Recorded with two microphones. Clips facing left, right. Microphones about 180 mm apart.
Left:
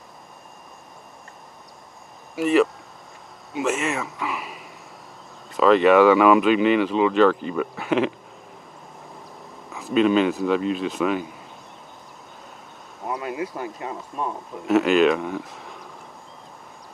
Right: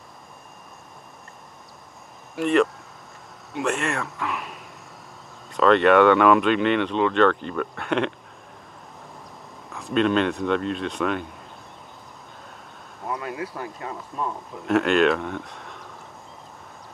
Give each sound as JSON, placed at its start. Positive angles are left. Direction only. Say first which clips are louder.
{"t": 2.3, "sound": "speech", "louder": "left 1 dB", "side_deg": 5}
{"t": 9.7, "sound": "speech", "louder": "left 3 dB", "side_deg": 5}
{"t": 13.0, "sound": "speech", "louder": "left 2 dB", "side_deg": 15}
{"t": 14.7, "sound": "speech", "louder": "left 2 dB", "side_deg": 0}